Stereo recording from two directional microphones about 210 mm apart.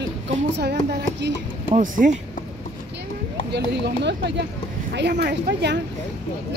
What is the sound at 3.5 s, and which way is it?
Speech, 50° right (ahead or behind).